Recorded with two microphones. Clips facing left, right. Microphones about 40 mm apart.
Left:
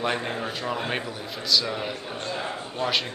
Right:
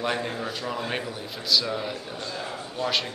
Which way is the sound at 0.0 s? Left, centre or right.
Centre.